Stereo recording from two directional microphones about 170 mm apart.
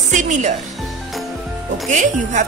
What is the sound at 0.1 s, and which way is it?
Speech, 45° right (ahead or behind).